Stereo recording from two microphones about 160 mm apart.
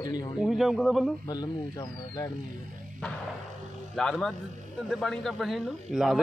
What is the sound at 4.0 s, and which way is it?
A man's voice, 5° left (ahead or behind).